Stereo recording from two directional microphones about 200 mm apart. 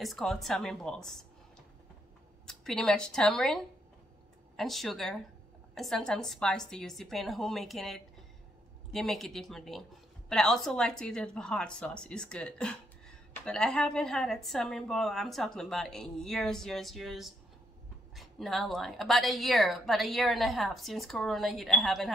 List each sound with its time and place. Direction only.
0.0 s a woman's voice: centre (ahead or behind)
2.4 s a woman's voice: centre (ahead or behind)